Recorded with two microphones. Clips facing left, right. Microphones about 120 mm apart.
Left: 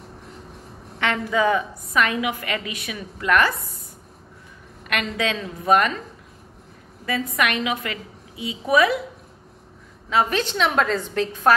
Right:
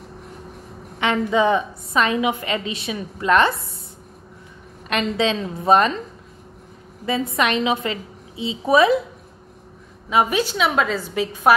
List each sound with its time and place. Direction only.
0.9 s a woman's voice: 20° right (ahead or behind)
4.8 s a woman's voice: 25° right (ahead or behind)
7.1 s a woman's voice: 25° right (ahead or behind)
10.0 s a woman's voice: 15° right (ahead or behind)